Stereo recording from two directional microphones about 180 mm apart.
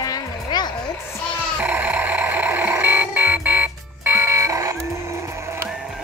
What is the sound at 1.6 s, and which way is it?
Vehicle, 10° right (ahead or behind).